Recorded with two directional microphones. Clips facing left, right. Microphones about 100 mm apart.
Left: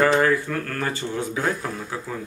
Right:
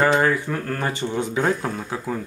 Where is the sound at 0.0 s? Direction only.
20° right (ahead or behind).